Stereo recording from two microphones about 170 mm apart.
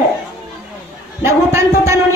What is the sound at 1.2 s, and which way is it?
Speech, 15° right (ahead or behind).